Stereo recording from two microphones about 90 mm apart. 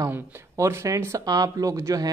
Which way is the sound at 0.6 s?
30° right (ahead or behind).